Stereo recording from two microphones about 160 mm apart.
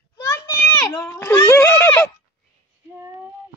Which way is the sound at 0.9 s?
15° left (ahead or behind).